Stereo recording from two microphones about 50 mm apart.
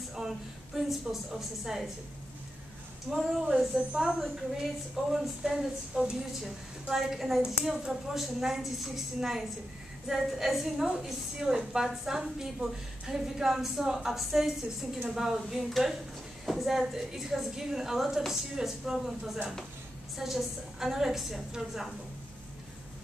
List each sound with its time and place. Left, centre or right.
0.2 s a woman's voice: centre
3.1 s a woman's voice: centre
3.7 s a woman's voice: centre
4.2 s a woman's voice: centre